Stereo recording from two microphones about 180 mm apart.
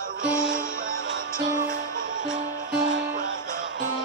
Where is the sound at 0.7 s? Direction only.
90° right.